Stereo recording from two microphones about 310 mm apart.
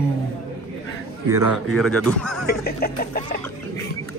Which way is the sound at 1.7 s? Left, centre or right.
Centre.